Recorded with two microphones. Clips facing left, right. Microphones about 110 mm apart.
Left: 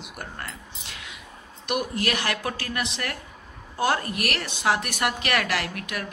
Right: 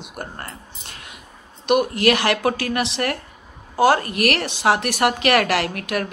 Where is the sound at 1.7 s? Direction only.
70° right (ahead or behind).